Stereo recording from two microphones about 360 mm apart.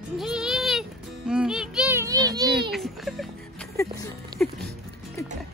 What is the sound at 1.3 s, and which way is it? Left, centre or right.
Music, centre.